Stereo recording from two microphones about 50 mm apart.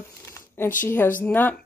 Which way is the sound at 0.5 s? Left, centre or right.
Left.